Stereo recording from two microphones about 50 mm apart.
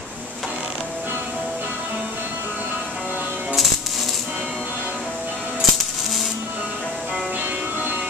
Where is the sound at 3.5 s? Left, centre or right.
Centre.